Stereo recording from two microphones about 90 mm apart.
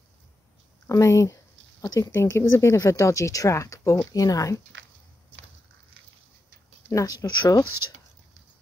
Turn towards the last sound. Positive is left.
turn(degrees=40)  # may be behind; listen again after turning